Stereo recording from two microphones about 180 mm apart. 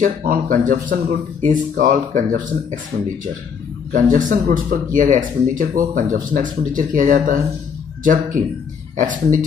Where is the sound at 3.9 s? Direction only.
45° right (ahead or behind).